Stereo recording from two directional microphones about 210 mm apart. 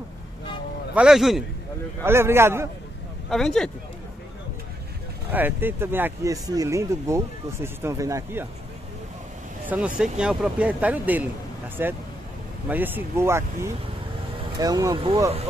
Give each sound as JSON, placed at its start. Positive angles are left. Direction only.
{"t": 0.9, "sound": "speech", "side_deg": -5}
{"t": 2.0, "sound": "speech", "side_deg": -10}
{"t": 3.3, "sound": "speech", "side_deg": 0}
{"t": 5.3, "sound": "speech", "side_deg": -10}
{"t": 9.7, "sound": "speech", "side_deg": -5}